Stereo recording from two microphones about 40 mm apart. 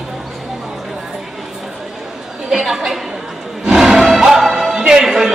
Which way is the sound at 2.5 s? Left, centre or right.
Centre.